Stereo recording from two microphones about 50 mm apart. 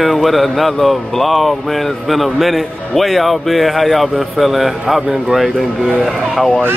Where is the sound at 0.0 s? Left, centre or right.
Centre.